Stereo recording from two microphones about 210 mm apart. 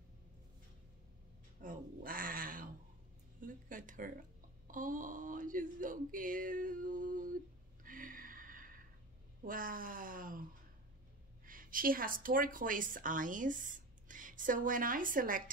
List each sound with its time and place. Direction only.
1.6 s a sound: 40° right (ahead or behind)
7.8 s gasp: 40° right (ahead or behind)
9.4 s speech: 40° right (ahead or behind)
11.4 s a woman's voice: 40° right (ahead or behind)